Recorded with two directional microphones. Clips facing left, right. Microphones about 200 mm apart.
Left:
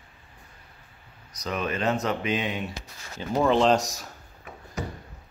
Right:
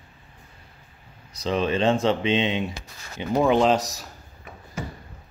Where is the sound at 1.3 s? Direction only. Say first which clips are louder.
Right 6 dB; 30° right (ahead or behind).